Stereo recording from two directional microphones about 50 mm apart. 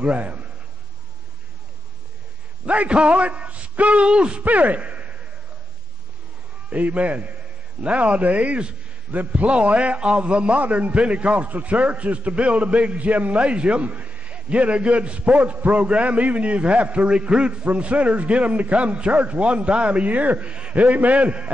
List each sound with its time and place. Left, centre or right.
0.0 s a man's voice: right
2.6 s a man's voice: right
4.5 s speech: right
6.7 s a man's voice: right